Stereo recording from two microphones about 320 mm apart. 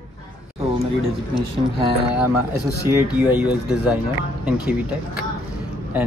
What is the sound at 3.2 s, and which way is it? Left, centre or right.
A woman's voice, centre.